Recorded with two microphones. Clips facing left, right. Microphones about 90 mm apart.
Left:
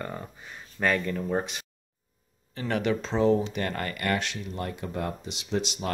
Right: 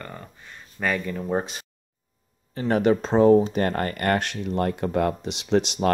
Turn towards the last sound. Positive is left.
turn(degrees=-60)  # may be behind; listen again after turning